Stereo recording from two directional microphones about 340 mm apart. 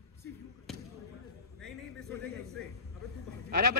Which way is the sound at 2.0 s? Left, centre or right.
Right.